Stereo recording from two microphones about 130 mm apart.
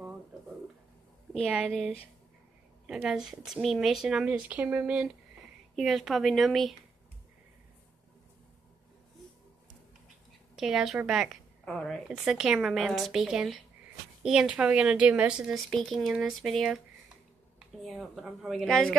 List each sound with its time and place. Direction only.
1.5 s speech: 5° right (ahead or behind)
10.5 s speech: 5° right (ahead or behind)
17.8 s speech: centre (ahead or behind)